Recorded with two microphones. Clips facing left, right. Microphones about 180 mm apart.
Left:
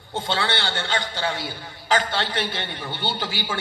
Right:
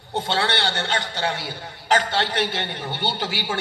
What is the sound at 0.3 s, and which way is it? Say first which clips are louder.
A man's voice: right 1 dB; 65° right (ahead or behind).